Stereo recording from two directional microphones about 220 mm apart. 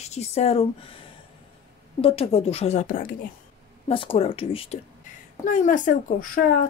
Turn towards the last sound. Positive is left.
turn(degrees=35)  # may be behind; listen again after turning